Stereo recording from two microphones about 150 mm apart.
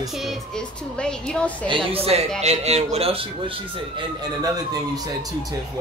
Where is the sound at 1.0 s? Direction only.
5° left (ahead or behind).